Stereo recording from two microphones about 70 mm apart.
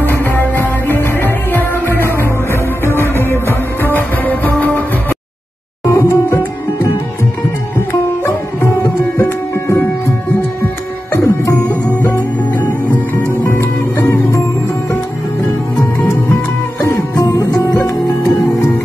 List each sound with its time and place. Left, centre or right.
0.0 s music: left
2.8 s music: left
5.9 s music: left
9.2 s music: left
11.1 s music: left
13.5 s music: left
17.2 s music: left